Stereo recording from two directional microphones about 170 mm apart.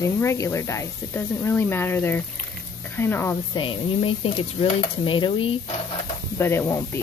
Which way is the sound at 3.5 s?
30° left (ahead or behind).